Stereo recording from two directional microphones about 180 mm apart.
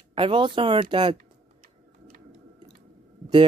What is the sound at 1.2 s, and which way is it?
Typing, 50° right (ahead or behind).